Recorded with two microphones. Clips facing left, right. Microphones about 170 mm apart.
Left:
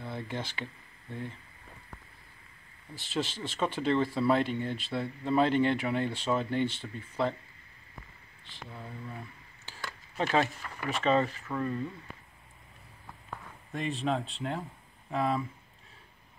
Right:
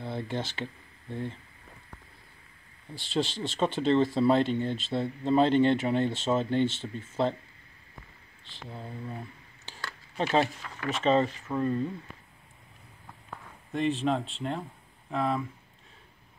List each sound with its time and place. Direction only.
0.0 s speech: 30° right (ahead or behind)
2.9 s speech: 30° right (ahead or behind)
8.5 s speech: 25° right (ahead or behind)
9.7 s a sound: 20° right (ahead or behind)
10.9 s speech: 20° right (ahead or behind)
13.7 s speech: centre (ahead or behind)